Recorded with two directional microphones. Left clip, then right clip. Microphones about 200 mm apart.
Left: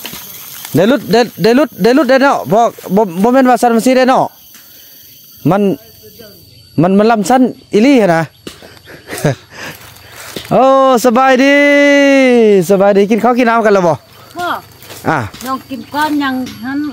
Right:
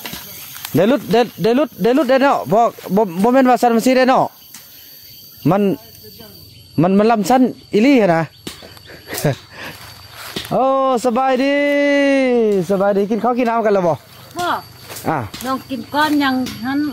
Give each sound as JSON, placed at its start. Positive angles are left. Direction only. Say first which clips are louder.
{"t": 0.7, "sound": "speech", "louder": "left 4 dB", "side_deg": 25}
{"t": 5.4, "sound": "speech", "louder": "left 4 dB", "side_deg": 20}
{"t": 6.8, "sound": "speech", "louder": "left 4 dB", "side_deg": 20}
{"t": 8.8, "sound": "a sound", "louder": "left 4 dB", "side_deg": 20}
{"t": 10.5, "sound": "speech", "louder": "left 7 dB", "side_deg": 40}
{"t": 12.4, "sound": "speech", "louder": "left 7 dB", "side_deg": 50}
{"t": 14.4, "sound": "a sound", "louder": "left 2 dB", "side_deg": 15}
{"t": 15.0, "sound": "speech", "louder": "left 6 dB", "side_deg": 30}
{"t": 15.4, "sound": "speech", "louder": "left 2 dB", "side_deg": 0}